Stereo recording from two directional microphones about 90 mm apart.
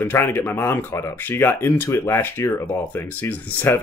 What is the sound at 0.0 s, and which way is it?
Speech, 25° left (ahead or behind).